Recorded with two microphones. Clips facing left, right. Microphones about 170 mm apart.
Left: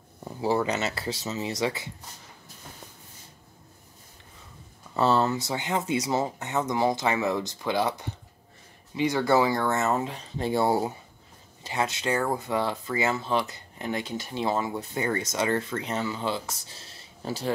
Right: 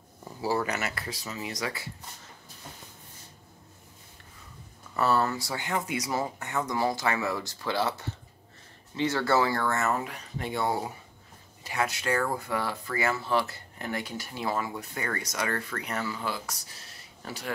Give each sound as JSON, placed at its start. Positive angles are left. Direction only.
{"t": 0.4, "sound": "speech", "side_deg": 20}
{"t": 4.9, "sound": "speech", "side_deg": 25}